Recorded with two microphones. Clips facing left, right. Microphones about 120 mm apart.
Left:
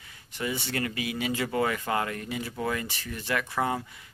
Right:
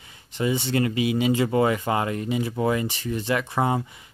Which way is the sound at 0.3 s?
25° right (ahead or behind).